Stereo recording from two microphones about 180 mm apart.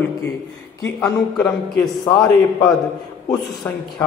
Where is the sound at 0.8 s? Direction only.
15° left (ahead or behind).